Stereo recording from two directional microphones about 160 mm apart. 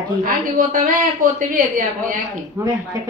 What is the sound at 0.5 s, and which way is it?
Speech, 60° right (ahead or behind).